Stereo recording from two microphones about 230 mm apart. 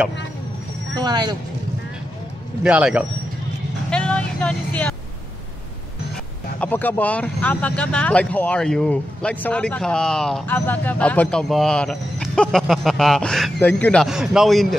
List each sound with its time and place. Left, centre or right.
0.9 s speech: centre
2.6 s speech: centre
3.9 s vehicle: centre
6.6 s speech: centre